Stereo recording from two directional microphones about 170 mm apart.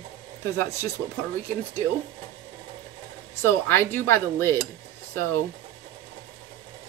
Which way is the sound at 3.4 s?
15° left (ahead or behind).